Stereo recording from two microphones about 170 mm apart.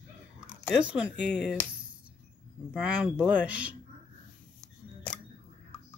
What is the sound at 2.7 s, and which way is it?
Speech, 10° right (ahead or behind).